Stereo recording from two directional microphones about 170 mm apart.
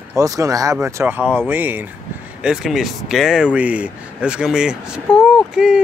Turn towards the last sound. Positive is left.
turn(degrees=-5)  # may be behind; listen again after turning